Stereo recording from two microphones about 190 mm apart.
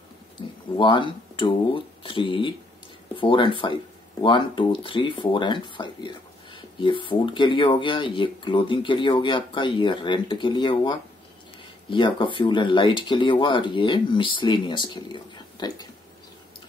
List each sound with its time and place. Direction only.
0.4 s speech: 25° left (ahead or behind)